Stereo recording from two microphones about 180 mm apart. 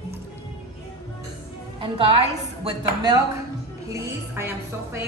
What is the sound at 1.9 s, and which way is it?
A woman's voice, 30° right (ahead or behind).